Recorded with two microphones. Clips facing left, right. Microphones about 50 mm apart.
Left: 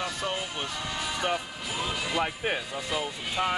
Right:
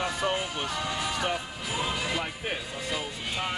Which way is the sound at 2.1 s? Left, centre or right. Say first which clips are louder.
Left 4 dB; centre.